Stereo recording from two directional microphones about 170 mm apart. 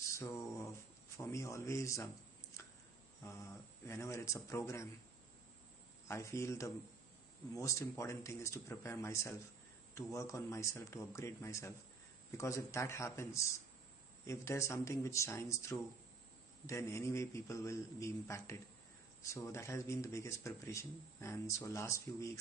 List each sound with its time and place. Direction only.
0.1 s a sound: 15° left (ahead or behind)
3.3 s speech: 15° left (ahead or behind)
6.0 s speech: 15° left (ahead or behind)